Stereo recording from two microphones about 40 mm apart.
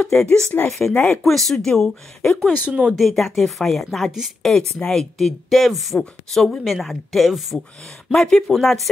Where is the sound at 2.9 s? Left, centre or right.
Centre.